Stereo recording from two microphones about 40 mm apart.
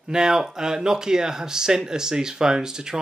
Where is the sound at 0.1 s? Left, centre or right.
Centre.